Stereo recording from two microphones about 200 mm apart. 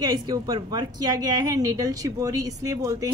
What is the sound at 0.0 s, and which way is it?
A woman's voice, 20° right (ahead or behind).